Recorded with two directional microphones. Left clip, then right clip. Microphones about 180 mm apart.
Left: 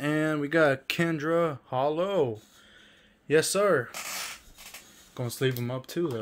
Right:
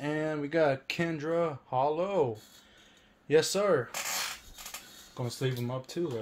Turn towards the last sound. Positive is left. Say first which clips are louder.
# left 3 dB
turn(degrees=50)  # may be behind; listen again after turning